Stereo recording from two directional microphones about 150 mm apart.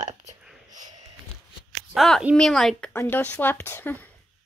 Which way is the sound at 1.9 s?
Centre (ahead or behind).